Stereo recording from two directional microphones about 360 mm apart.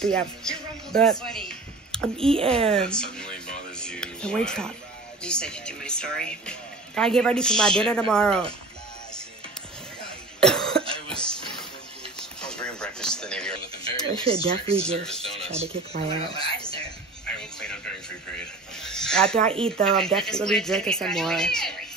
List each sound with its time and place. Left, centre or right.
0.0 s speech: centre
2.3 s speech: centre
2.7 s speech: centre
10.4 s cough: centre
11.1 s a sound: centre
14.2 s speech: centre
14.8 s speech: centre
15.4 s speech: centre
17.4 s a sound: centre
18.8 s snake: centre
19.8 s speech: centre